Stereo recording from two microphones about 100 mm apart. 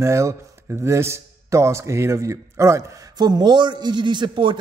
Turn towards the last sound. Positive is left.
turn(degrees=-55)  # may be behind; listen again after turning